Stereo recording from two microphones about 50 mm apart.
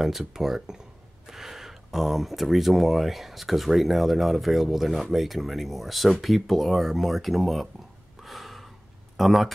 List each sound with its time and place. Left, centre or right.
0.0 s speech: centre
8.2 s gasp: centre